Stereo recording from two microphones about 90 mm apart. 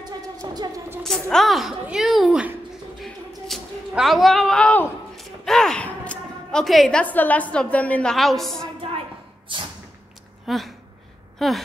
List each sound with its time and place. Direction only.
0.0 s music: 45° right (ahead or behind)
1.0 s a woman's voice: 5° left (ahead or behind)
3.0 s a sound: centre (ahead or behind)
3.9 s a woman's voice: centre (ahead or behind)
5.1 s sigh: 5° left (ahead or behind)
6.6 s a woman's voice: centre (ahead or behind)
7.0 s a woman's voice: 20° left (ahead or behind)
8.1 s a woman's voice: centre (ahead or behind)
10.4 s speech: centre (ahead or behind)